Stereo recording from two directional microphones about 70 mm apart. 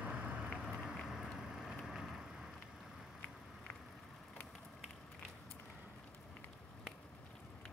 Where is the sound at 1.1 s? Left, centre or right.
Centre.